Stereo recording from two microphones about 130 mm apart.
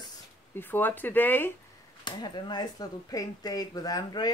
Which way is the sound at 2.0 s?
35° left (ahead or behind).